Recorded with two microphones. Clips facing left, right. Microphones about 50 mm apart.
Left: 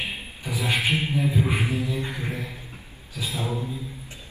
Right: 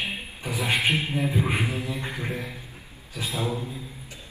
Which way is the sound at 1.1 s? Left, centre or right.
Right.